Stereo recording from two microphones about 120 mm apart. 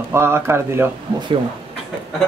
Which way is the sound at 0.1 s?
20° right (ahead or behind).